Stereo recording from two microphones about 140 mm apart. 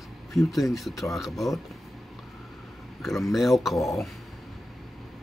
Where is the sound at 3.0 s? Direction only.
Centre (ahead or behind).